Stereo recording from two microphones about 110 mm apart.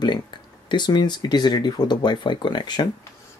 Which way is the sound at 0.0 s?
45° left (ahead or behind).